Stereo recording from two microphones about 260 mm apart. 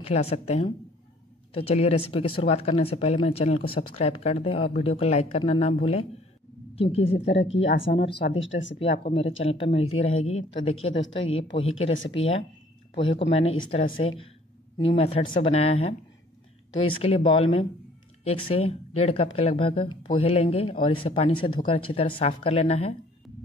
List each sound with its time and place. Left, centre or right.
0.0 s speech: left
7.6 s speech: left
9.0 s speech: left
11.0 s speech: left
12.9 s speech: left